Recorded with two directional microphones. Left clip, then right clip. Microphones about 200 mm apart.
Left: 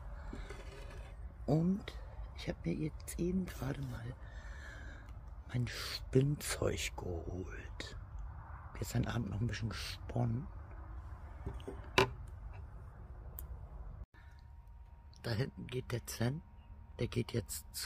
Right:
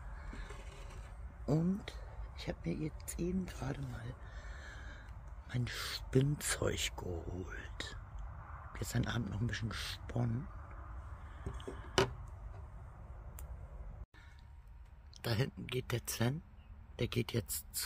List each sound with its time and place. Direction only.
1.4 s speech: centre (ahead or behind)
15.2 s speech: 25° right (ahead or behind); by 17.8 s 5° right (ahead or behind)